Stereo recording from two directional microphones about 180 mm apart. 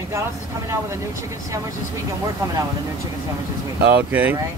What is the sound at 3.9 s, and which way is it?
Speech, 10° right (ahead or behind).